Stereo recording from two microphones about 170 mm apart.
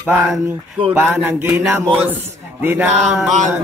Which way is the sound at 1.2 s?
15° right (ahead or behind).